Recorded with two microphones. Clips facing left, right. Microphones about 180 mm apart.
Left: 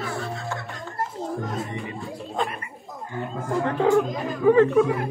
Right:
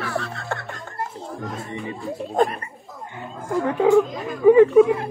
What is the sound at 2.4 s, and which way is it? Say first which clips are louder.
Speech: right 8 dB; 45° right (ahead or behind).